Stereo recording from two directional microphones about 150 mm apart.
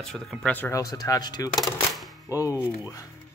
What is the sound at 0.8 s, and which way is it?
Speech, 25° left (ahead or behind).